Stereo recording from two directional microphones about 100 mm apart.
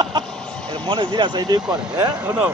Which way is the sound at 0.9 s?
50° right (ahead or behind).